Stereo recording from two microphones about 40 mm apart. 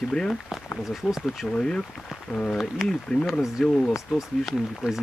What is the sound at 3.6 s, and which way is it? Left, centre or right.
Speech, centre.